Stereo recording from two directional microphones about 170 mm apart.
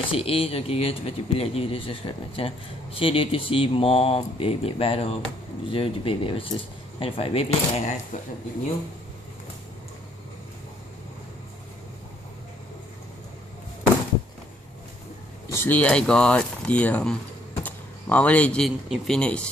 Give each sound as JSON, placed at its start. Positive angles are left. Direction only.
{"t": 0.1, "sound": "speech", "side_deg": 35}
{"t": 15.4, "sound": "speech", "side_deg": 15}